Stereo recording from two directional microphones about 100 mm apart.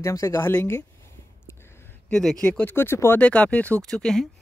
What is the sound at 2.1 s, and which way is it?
Speech, 5° left (ahead or behind).